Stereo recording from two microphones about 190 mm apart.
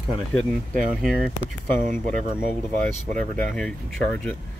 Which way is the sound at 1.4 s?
45° right (ahead or behind).